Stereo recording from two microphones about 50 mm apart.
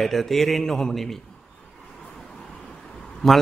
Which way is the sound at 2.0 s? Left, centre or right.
Centre.